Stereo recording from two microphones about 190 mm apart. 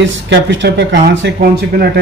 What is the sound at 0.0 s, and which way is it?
A man's voice, 70° right (ahead or behind).